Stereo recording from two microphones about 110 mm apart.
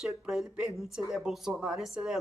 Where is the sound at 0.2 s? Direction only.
5° right (ahead or behind).